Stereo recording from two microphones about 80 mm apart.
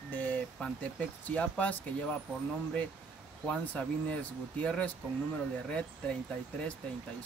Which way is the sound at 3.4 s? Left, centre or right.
Centre.